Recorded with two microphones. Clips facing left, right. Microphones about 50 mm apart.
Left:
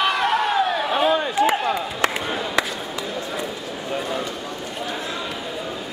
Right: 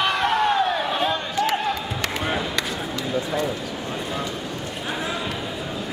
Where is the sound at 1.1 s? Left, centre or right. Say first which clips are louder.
Left 4 dB; centre.